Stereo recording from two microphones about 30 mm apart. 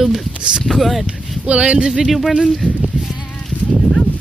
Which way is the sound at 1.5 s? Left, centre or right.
Right.